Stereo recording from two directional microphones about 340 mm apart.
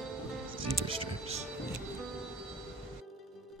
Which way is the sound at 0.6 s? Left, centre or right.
Centre.